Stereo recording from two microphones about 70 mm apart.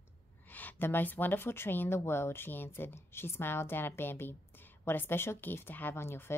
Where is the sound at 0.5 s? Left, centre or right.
Left.